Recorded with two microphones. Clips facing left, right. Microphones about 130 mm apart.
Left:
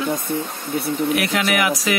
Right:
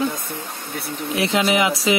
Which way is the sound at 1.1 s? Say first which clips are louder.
Right 1 dB; 25° right (ahead or behind).